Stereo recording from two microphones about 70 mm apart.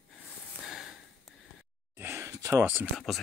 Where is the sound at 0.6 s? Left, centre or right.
Centre.